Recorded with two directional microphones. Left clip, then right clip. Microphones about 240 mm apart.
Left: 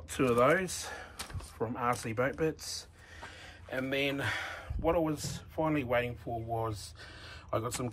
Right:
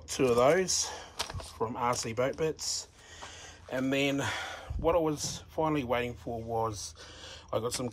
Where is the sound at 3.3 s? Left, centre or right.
Centre.